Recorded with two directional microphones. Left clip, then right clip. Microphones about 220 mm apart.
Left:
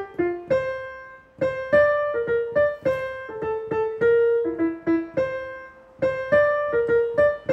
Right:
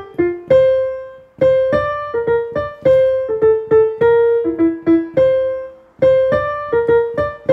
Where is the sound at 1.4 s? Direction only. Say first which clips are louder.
Right 6 dB; 40° right (ahead or behind).